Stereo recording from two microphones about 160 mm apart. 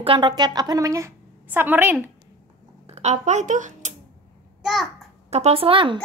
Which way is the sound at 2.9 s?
45° right (ahead or behind).